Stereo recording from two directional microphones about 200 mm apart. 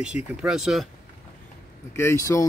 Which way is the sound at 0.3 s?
5° right (ahead or behind).